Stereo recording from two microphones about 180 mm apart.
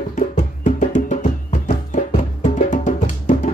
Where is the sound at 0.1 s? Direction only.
45° left (ahead or behind).